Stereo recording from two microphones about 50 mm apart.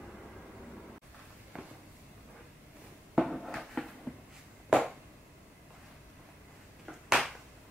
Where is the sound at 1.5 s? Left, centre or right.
Centre.